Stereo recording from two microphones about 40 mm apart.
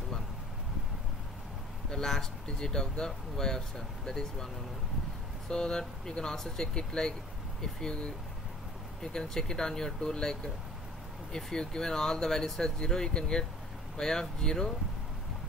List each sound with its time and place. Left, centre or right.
1.9 s speech: centre
5.5 s speech: centre
9.0 s speech: centre
11.6 s speech: centre